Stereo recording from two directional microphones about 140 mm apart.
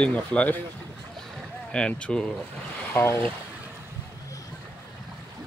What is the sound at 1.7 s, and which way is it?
Speech, 5° left (ahead or behind).